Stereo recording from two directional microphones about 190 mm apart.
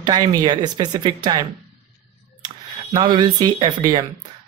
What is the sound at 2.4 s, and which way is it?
Speech, 20° right (ahead or behind).